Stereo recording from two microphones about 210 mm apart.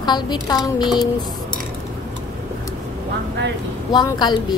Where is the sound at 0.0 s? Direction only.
20° left (ahead or behind).